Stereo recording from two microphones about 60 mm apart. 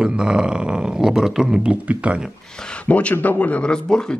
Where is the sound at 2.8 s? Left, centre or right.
Left.